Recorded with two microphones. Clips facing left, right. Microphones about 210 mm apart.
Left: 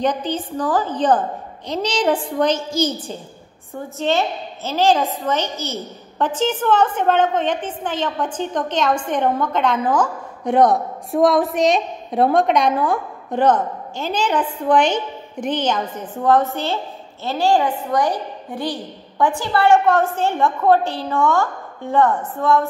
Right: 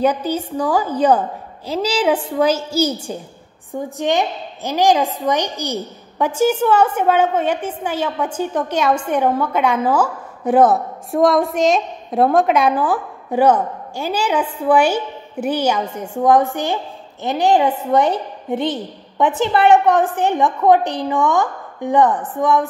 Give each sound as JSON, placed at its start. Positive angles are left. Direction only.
{"t": 0.0, "sound": "a woman's voice", "side_deg": -10}